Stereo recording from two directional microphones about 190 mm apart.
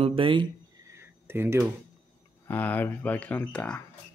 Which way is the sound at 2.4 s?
10° left (ahead or behind).